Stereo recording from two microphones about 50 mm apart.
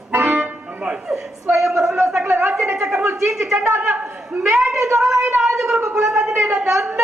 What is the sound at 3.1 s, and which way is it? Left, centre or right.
Speech, centre.